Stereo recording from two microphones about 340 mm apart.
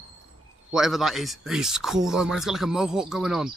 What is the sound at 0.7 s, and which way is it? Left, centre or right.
Speech, centre.